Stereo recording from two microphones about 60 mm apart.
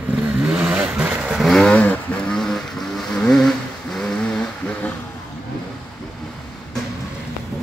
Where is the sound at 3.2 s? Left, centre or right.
Centre.